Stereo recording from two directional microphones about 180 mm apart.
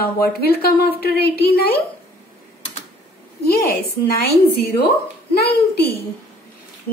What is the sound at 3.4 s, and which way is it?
A woman's voice, 60° left (ahead or behind).